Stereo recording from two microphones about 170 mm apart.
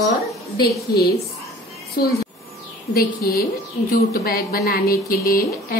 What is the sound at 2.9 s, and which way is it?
A woman's voice, 65° left (ahead or behind).